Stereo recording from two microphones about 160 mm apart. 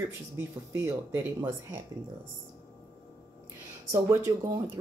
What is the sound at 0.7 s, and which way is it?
Speech, 15° right (ahead or behind).